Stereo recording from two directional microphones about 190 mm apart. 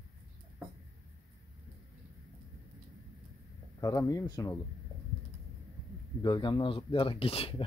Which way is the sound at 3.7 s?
15° left (ahead or behind).